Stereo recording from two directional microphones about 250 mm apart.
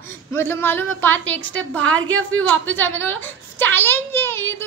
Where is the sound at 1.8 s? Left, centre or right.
Right.